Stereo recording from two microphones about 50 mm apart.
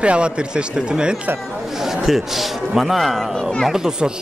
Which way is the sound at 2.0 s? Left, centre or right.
Centre.